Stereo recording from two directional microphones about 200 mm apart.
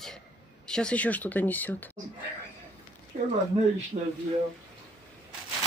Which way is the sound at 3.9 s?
35° right (ahead or behind).